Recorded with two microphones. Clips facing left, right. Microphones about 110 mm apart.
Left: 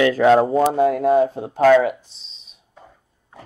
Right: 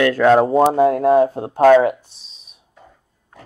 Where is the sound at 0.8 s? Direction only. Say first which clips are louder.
Right 2 dB; 40° right (ahead or behind).